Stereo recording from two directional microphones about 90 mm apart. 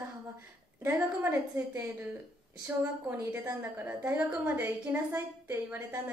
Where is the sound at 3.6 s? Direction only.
25° right (ahead or behind).